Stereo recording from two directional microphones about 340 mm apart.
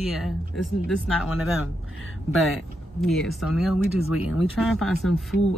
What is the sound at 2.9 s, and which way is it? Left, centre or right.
Speech, centre.